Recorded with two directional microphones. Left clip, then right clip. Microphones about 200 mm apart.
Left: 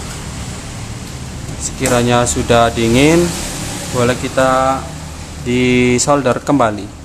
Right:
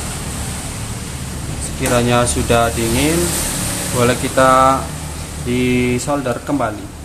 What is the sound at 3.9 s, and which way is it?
Speech, 5° left (ahead or behind).